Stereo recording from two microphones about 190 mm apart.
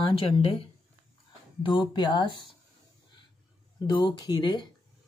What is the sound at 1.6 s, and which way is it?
Speech, 25° left (ahead or behind).